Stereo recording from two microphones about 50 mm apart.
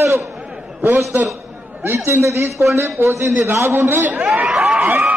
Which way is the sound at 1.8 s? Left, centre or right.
Right.